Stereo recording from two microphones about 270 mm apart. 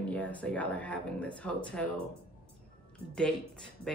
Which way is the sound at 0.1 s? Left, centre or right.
Centre.